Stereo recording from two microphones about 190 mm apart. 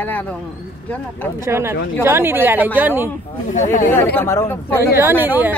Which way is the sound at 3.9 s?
10° left (ahead or behind).